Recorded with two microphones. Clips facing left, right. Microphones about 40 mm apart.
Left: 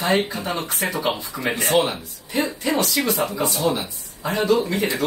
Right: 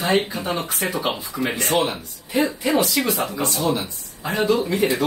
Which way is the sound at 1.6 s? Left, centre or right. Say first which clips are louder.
Left 2 dB; centre.